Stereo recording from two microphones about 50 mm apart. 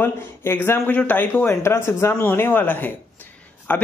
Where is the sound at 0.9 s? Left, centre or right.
Left.